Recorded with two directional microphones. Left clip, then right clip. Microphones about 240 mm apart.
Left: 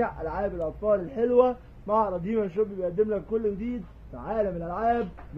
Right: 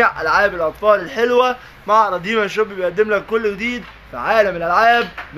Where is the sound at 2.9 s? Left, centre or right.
Centre.